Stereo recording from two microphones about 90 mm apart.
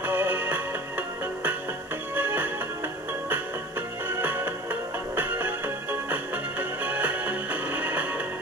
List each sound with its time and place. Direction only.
0.0 s music: 20° right (ahead or behind)
4.2 s music: 20° right (ahead or behind)